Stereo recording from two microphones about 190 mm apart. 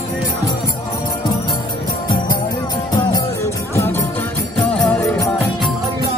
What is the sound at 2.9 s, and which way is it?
Music, 15° left (ahead or behind).